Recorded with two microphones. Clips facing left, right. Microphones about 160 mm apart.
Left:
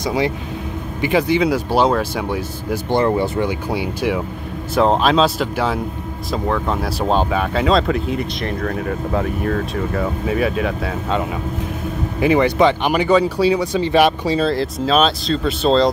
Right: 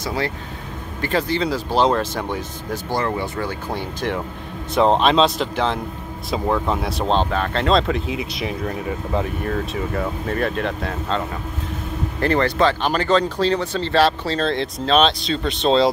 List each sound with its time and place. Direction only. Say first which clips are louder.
0.0 s speech: left 5 dB; 15° left (ahead or behind)
2.9 s speech: left 7 dB; 30° left (ahead or behind)
3.4 s speech: left 5 dB; 10° left (ahead or behind)